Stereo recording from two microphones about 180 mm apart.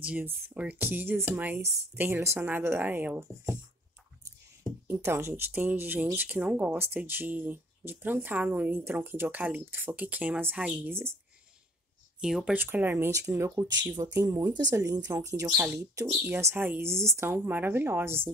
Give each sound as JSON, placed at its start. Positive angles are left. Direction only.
{"t": 0.0, "sound": "speech", "side_deg": -5}
{"t": 4.2, "sound": "a sound", "side_deg": -20}
{"t": 4.9, "sound": "speech", "side_deg": -15}
{"t": 12.2, "sound": "speech", "side_deg": -5}